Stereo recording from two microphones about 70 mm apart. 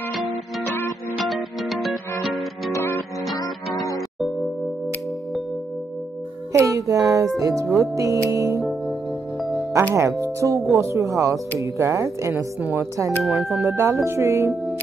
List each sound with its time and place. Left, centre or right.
1.1 s music: centre
3.3 s music: left
6.6 s music: right
7.8 s a woman's voice: right
9.9 s a woman's voice: right
13.3 s speech: centre
13.7 s speech: right